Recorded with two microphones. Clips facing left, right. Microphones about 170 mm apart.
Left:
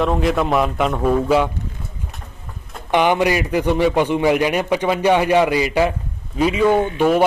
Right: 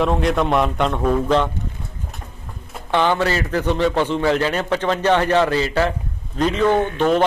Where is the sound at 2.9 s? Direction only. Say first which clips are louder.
Left 2 dB; 15° left (ahead or behind).